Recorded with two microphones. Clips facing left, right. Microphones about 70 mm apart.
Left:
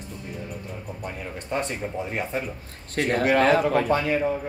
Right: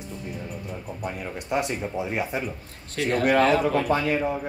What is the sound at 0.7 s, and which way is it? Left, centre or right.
Speech, centre.